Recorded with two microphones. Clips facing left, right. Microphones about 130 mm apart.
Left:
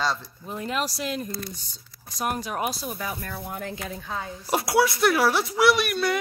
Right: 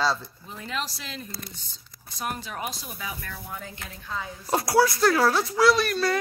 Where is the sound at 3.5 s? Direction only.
60° left (ahead or behind).